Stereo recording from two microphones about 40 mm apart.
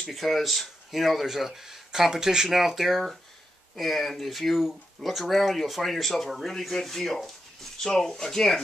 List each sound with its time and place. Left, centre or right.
0.1 s speech: centre